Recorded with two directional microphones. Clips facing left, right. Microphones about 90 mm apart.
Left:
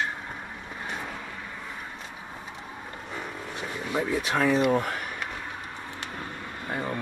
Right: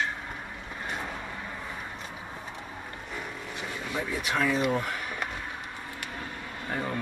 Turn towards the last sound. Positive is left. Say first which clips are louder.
# left 1 dB
turn(degrees=25)  # may be behind; listen again after turning